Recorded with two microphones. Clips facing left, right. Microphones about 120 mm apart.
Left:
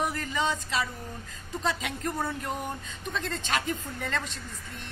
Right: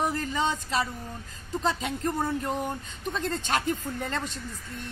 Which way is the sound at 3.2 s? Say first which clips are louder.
Right 3 dB; 40° right (ahead or behind).